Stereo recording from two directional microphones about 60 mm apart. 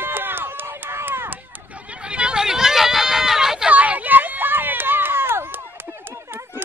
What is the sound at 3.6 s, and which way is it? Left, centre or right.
Run, right.